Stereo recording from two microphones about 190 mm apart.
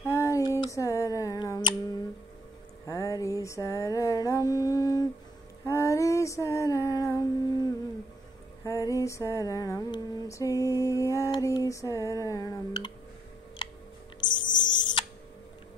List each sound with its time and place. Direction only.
0.0 s music: 15° left (ahead or behind)
2.9 s mantra: 15° left (ahead or behind)
5.7 s female singing: 15° left (ahead or behind)
8.6 s female singing: 15° left (ahead or behind)
14.2 s a sound: 25° left (ahead or behind)